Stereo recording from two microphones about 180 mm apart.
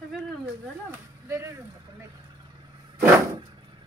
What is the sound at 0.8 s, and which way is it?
Speech, 15° right (ahead or behind).